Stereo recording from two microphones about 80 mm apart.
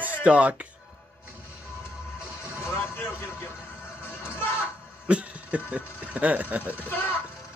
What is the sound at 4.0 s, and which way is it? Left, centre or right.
Music, left.